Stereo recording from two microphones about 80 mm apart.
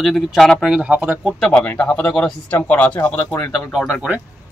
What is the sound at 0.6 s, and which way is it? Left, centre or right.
Speech, centre.